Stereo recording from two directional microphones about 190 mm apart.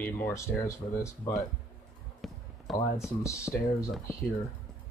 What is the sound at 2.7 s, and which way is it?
Speech, centre (ahead or behind).